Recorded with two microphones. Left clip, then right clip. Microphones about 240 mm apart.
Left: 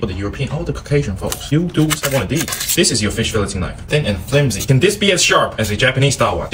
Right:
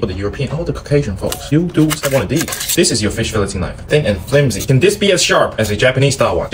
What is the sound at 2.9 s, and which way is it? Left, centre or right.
Speech, centre.